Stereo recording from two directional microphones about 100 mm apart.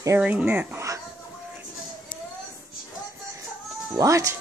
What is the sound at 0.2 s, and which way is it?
Speech, 15° right (ahead or behind).